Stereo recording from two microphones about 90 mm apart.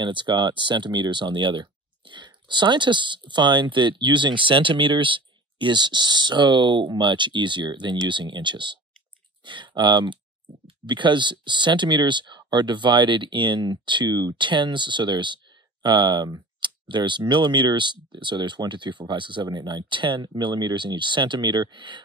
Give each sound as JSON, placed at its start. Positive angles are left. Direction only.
{"t": 0.0, "sound": "speech", "side_deg": -60}
{"t": 16.5, "sound": "speech", "side_deg": -60}